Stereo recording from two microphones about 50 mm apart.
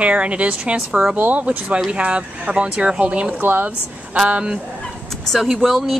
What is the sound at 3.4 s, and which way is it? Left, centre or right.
Speech, right.